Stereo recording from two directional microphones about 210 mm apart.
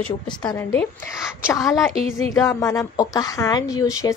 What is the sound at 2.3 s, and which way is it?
Speech, 15° left (ahead or behind).